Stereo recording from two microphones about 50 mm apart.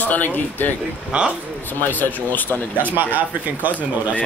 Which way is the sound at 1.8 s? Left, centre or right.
Left.